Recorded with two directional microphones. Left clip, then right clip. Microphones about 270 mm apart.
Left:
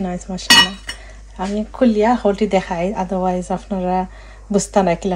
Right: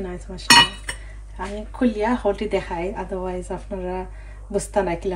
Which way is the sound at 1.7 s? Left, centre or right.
Left.